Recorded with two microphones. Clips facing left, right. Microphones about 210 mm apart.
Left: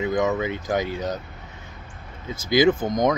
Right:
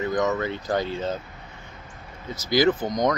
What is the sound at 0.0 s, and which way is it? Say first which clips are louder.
Speech: left 1 dB; 10° left (ahead or behind).